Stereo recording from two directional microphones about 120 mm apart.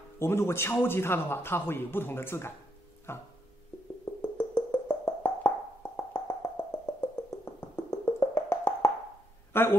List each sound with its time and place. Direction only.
0.2 s a man's voice: 20° left (ahead or behind)
4.2 s music: 20° left (ahead or behind)
9.5 s speech: 20° left (ahead or behind)